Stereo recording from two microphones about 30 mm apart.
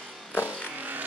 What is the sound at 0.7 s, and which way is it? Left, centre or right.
Music, right.